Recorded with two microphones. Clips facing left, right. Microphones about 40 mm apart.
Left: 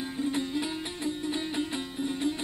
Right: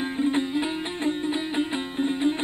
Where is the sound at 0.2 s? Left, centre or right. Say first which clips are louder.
Right 5 dB; right.